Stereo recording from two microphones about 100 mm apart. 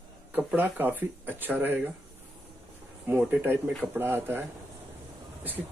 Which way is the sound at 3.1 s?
20° right (ahead or behind).